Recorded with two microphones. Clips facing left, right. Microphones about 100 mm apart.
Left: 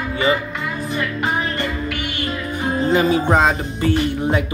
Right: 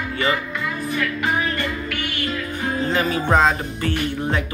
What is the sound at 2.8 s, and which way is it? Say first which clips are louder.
Music: left 6 dB; 20° left (ahead or behind).